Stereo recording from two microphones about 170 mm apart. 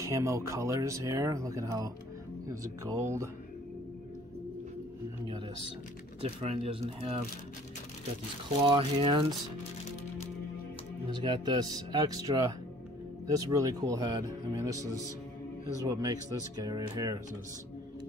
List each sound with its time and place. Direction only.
0.0 s speech: 20° right (ahead or behind)
6.2 s speech: 35° right (ahead or behind)
8.6 s speech: 30° right (ahead or behind)
11.1 s speech: 25° right (ahead or behind)